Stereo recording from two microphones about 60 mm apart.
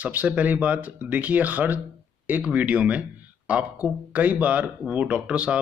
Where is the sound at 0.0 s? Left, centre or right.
Right.